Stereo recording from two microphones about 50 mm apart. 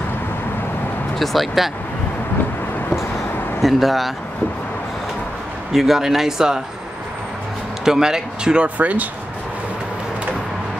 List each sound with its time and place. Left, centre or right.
1.2 s speech: centre
3.6 s speech: centre
5.7 s speech: centre
7.8 s speech: centre
8.6 s speech: right